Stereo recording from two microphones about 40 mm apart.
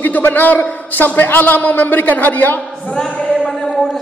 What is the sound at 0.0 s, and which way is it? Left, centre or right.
A man's voice, left.